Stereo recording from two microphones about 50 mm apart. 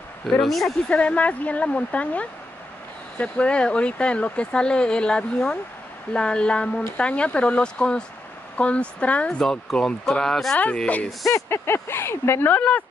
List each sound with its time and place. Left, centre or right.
0.3 s speech: centre
0.8 s speech: left
9.4 s speech: centre
11.2 s speech: left
12.4 s speech: left